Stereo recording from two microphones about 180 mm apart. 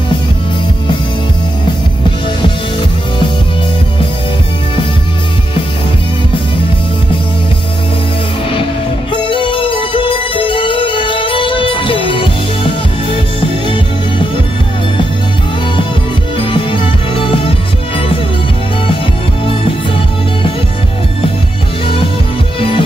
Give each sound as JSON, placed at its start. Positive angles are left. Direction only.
{"t": 9.1, "sound": "music", "side_deg": 25}
{"t": 16.3, "sound": "music", "side_deg": 30}
{"t": 22.6, "sound": "music", "side_deg": 30}